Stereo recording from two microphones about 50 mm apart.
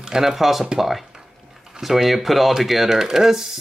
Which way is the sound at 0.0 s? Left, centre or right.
Centre.